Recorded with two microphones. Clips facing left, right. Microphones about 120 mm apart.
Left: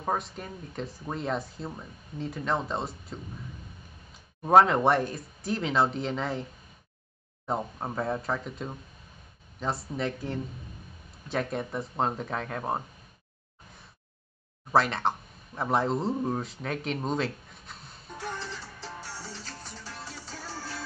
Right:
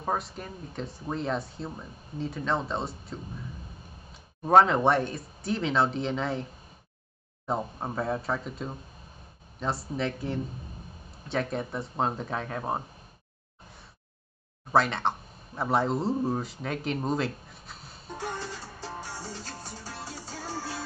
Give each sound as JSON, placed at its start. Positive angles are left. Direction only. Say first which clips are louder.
{"t": 0.0, "sound": "speech", "louder": "even", "side_deg": 0}
{"t": 4.4, "sound": "speech", "louder": "even", "side_deg": 5}
{"t": 7.4, "sound": "speech", "louder": "right 1 dB", "side_deg": 0}
{"t": 14.7, "sound": "speech", "louder": "even", "side_deg": 0}
{"t": 18.8, "sound": "music", "louder": "right 3 dB", "side_deg": -15}
{"t": 19.2, "sound": "music", "louder": "right 3 dB", "side_deg": -40}
{"t": 20.3, "sound": "music", "louder": "right 5 dB", "side_deg": -25}